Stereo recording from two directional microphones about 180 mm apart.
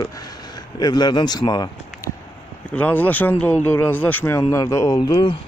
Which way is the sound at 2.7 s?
10° left (ahead or behind).